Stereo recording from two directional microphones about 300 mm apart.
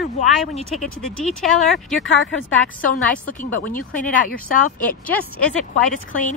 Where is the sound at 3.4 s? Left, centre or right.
Left.